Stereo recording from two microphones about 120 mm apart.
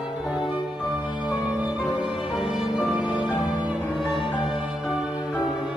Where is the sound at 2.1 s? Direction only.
45° left (ahead or behind).